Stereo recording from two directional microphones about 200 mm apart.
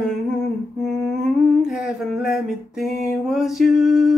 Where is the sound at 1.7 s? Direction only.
5° right (ahead or behind).